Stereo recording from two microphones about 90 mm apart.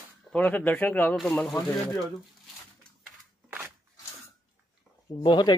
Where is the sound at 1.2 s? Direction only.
5° left (ahead or behind).